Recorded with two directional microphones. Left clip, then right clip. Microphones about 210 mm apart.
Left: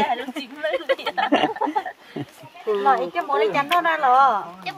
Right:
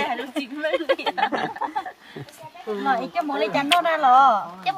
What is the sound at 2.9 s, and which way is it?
Speech, 20° left (ahead or behind).